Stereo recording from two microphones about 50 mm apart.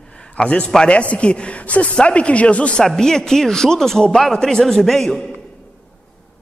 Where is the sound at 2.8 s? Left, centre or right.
Centre.